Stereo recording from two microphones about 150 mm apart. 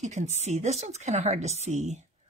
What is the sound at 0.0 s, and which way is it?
A woman's voice, 50° right (ahead or behind).